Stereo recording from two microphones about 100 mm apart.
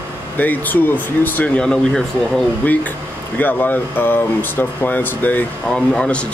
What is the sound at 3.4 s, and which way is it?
Speech, 20° left (ahead or behind).